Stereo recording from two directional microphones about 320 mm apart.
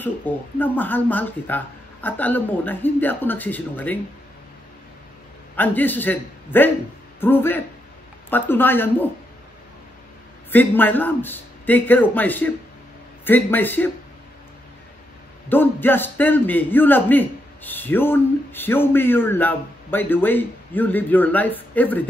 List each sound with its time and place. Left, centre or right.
0.0 s a man's voice: centre
5.6 s a man's voice: centre
10.5 s a man's voice: centre
15.5 s a man's voice: centre